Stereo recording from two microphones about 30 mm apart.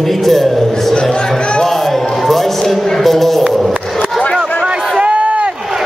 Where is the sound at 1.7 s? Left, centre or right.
Centre.